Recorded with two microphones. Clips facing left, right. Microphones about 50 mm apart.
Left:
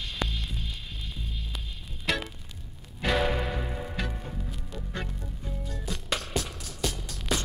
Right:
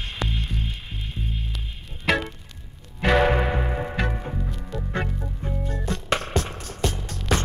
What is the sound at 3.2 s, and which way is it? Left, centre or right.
Music, right.